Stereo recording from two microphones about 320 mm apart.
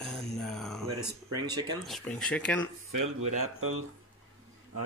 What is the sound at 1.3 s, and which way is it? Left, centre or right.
Speech, centre.